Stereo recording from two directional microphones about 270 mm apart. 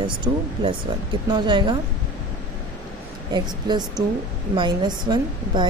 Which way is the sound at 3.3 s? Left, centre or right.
Centre.